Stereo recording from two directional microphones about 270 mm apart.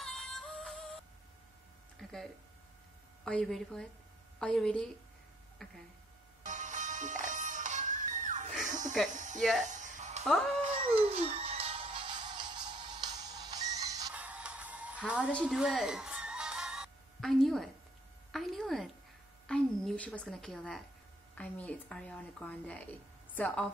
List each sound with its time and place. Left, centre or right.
0.0 s music: centre
3.3 s a woman's voice: centre
6.4 s music: right
8.6 s electric shaver: right
9.4 s a woman's voice: centre
9.7 s music: right
10.2 s a woman's voice: centre
10.6 s music: right; by 17.6 s centre
18.3 s a woman's voice: centre